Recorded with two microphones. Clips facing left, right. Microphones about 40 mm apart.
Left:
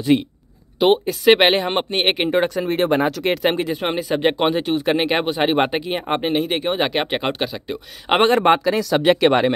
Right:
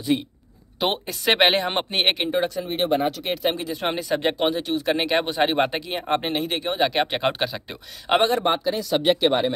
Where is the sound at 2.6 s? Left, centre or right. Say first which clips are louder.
Left 4 dB; left.